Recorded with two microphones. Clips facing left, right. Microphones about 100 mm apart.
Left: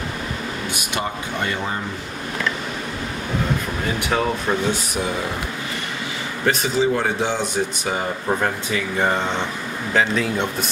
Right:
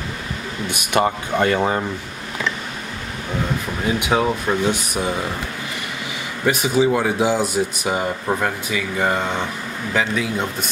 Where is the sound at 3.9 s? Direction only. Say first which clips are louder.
Right 3 dB; 15° right (ahead or behind).